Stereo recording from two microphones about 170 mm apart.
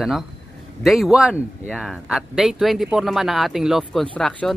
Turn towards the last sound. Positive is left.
turn(degrees=5)  # may be behind; listen again after turning